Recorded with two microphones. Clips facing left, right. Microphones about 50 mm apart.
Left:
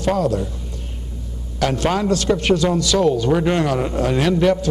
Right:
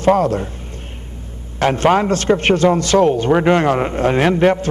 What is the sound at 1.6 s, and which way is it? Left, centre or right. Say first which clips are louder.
A man's voice: right 5 dB; right.